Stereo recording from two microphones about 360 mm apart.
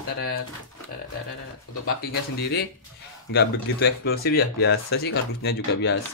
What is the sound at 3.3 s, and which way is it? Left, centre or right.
Speech, left.